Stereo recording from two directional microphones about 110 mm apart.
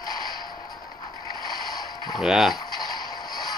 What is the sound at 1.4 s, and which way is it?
Mechanisms, 40° left (ahead or behind).